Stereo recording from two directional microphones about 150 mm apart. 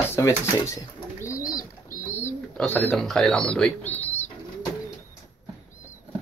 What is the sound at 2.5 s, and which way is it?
Speech, 10° left (ahead or behind).